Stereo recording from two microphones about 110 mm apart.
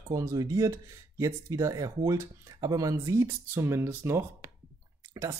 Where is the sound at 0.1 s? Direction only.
30° right (ahead or behind).